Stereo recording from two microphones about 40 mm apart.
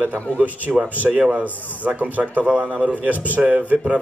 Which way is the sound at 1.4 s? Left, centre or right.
Right.